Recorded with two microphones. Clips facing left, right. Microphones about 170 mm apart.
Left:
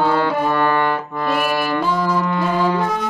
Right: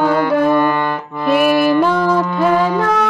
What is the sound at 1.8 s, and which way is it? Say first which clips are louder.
Music: right 5 dB; 65° right (ahead or behind).